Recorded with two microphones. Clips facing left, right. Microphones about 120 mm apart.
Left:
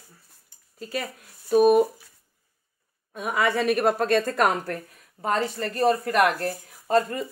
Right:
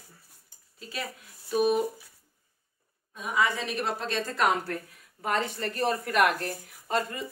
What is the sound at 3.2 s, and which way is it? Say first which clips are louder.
Speech: left 4 dB; 60° left (ahead or behind).